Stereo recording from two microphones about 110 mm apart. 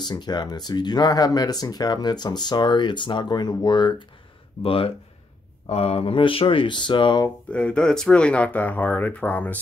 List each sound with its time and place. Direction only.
0.0 s speech: 40° left (ahead or behind)
4.6 s speech: 55° left (ahead or behind)
5.7 s speech: 70° left (ahead or behind); by 7.2 s 45° left (ahead or behind)
7.5 s speech: 10° left (ahead or behind)